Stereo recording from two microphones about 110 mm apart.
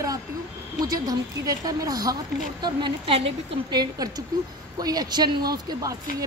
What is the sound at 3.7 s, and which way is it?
A woman's voice, 40° right (ahead or behind).